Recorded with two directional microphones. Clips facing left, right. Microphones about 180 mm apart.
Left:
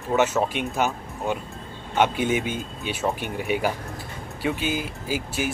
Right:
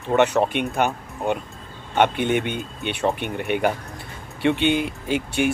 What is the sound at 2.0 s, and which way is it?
Speech, 60° right (ahead or behind).